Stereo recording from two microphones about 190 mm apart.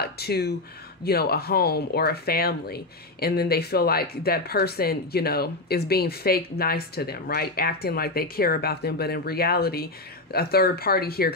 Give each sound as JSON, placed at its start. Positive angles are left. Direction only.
{"t": 0.0, "sound": "speech", "side_deg": 55}